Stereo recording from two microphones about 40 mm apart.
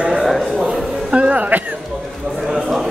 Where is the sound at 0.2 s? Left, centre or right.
Centre.